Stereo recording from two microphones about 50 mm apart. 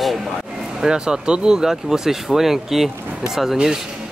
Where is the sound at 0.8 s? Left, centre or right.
Centre.